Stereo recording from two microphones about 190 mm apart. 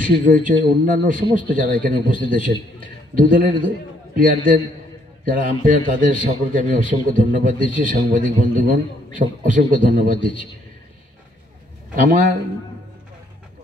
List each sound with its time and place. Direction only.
0.2 s a man's voice: 45° right (ahead or behind)
11.9 s a man's voice: 45° right (ahead or behind)